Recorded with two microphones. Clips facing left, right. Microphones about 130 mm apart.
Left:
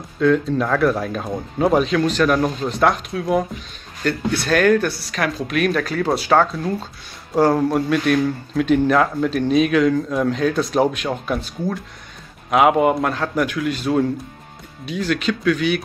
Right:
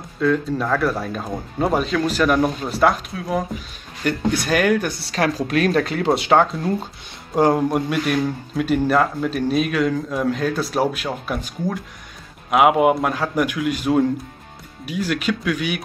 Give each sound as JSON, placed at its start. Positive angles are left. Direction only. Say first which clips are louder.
{"t": 0.2, "sound": "speech", "louder": "left 3 dB", "side_deg": 0}
{"t": 4.0, "sound": "speech", "louder": "even", "side_deg": -15}
{"t": 5.0, "sound": "speech", "louder": "right 2 dB", "side_deg": -30}